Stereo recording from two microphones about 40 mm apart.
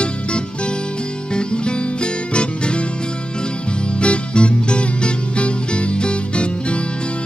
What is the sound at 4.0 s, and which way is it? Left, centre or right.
Music, left.